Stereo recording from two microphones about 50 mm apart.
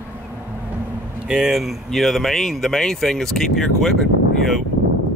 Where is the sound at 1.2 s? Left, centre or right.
Centre.